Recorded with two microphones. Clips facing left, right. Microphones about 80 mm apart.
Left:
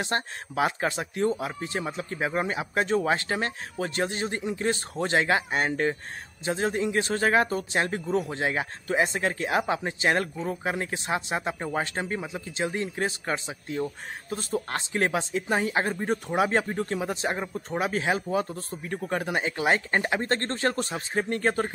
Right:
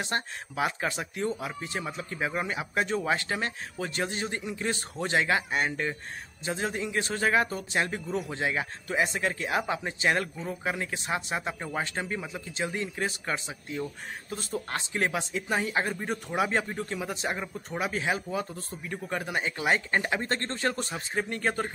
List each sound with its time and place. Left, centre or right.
0.0 s speech: left
12.2 s speech: left
12.5 s speech: left